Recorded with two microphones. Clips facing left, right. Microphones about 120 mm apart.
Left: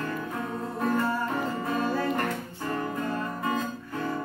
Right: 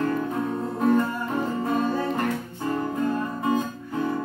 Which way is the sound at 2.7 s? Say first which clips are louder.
Right 5 dB; 20° right (ahead or behind).